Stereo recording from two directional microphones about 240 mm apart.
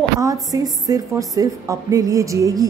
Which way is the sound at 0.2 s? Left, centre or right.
Centre.